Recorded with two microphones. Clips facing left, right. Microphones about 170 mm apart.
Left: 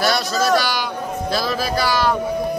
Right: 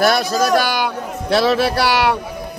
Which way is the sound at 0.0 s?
55° right (ahead or behind).